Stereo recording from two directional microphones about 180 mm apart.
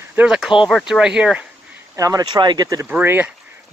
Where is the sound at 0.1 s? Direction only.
5° right (ahead or behind).